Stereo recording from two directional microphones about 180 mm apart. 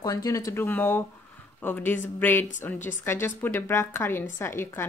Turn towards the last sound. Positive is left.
turn(degrees=15)  # may be behind; listen again after turning